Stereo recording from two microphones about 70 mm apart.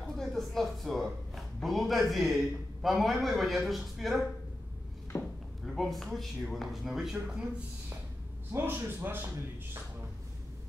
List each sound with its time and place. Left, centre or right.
0.0 s speech: centre
5.1 s a sound: left
5.8 s speech: centre
8.5 s a man's voice: right